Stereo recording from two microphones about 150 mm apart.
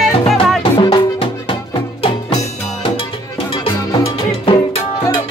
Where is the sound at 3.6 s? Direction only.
35° left (ahead or behind).